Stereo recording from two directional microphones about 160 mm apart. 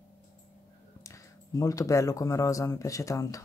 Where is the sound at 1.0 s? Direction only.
20° left (ahead or behind).